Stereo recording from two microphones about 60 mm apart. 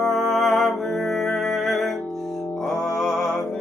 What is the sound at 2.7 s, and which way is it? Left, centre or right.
Mantra, centre.